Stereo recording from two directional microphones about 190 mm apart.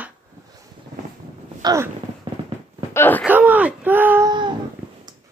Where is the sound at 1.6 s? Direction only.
20° right (ahead or behind).